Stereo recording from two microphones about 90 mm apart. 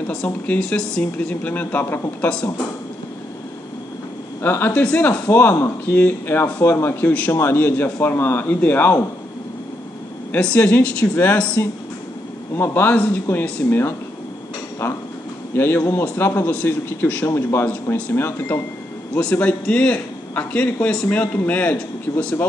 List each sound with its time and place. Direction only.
0.0 s a man's voice: 15° left (ahead or behind)
4.4 s speech: 25° left (ahead or behind)
10.3 s a man's voice: 15° left (ahead or behind)
15.5 s a man's voice: 25° left (ahead or behind)